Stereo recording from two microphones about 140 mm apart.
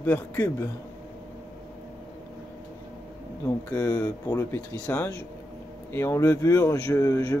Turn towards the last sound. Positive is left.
turn(degrees=20)  # may be behind; listen again after turning